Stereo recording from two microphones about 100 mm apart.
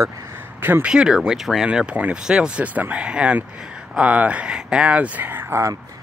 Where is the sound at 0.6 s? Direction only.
20° right (ahead or behind).